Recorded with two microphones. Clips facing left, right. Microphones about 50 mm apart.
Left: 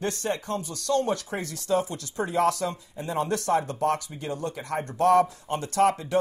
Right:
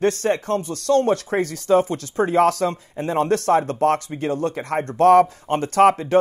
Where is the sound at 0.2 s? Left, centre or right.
Right.